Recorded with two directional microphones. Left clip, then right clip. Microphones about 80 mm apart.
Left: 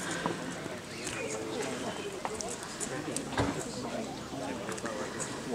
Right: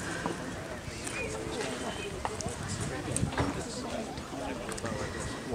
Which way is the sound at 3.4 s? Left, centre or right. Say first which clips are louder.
Left 1 dB; left.